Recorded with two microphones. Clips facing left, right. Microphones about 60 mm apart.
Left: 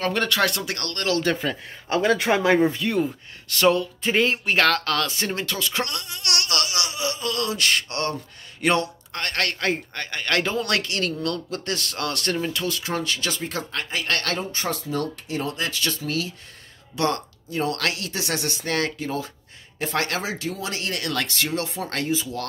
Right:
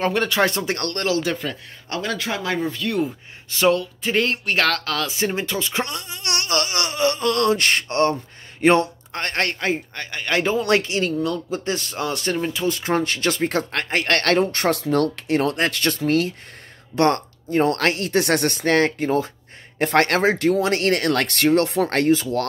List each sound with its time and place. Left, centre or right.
0.3 s speech: right
1.0 s speech: centre
1.3 s speech: centre
2.0 s speech: left
2.9 s speech: centre
3.4 s speech: centre
3.7 s speech: centre
5.1 s speech: centre
9.7 s speech: centre
12.6 s speech: right
18.8 s speech: right
19.8 s speech: right